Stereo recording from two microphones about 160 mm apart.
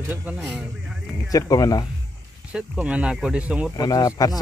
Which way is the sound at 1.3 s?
25° left (ahead or behind).